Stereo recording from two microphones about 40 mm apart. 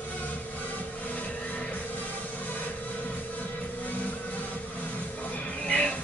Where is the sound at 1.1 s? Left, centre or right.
Left.